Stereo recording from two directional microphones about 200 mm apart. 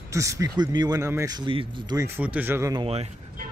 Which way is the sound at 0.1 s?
15° right (ahead or behind).